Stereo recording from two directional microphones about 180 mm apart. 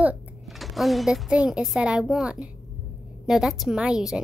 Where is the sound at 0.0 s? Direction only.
5° right (ahead or behind).